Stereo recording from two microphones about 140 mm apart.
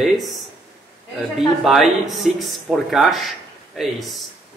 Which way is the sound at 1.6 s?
Centre (ahead or behind).